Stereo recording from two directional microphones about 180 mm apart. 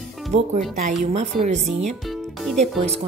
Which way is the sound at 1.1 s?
40° right (ahead or behind).